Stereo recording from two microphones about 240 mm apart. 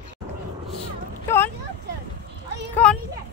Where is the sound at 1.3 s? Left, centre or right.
Centre.